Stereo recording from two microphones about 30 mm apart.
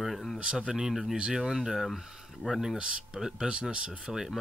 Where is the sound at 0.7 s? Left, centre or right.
Centre.